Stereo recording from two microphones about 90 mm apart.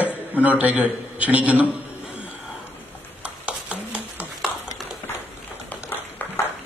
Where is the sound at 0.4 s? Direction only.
15° right (ahead or behind).